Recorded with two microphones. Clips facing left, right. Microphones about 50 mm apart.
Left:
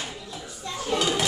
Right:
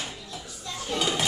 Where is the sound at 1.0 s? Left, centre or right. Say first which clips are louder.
Left 1 dB; centre.